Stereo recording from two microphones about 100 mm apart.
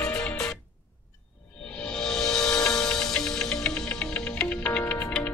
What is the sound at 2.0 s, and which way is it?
Music, 5° left (ahead or behind).